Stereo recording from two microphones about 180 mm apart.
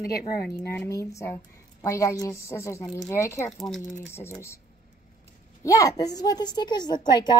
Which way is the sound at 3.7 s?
Centre (ahead or behind).